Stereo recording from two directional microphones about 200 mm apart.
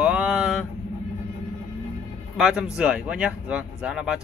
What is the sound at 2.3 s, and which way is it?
Speech, 5° right (ahead or behind).